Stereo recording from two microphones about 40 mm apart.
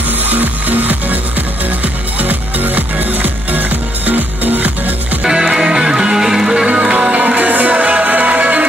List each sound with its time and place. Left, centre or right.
0.3 s music: right
2.1 s music: right
5.5 s music: centre
6.7 s music: right